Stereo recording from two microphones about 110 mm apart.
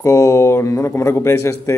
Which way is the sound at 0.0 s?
30° left (ahead or behind).